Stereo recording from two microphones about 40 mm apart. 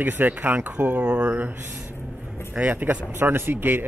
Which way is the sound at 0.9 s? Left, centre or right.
Right.